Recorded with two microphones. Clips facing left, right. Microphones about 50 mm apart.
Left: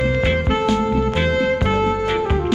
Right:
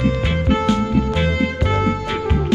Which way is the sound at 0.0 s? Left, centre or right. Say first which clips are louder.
Left 1 dB; left.